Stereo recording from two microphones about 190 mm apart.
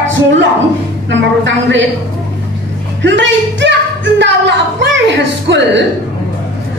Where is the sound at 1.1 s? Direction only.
70° right (ahead or behind).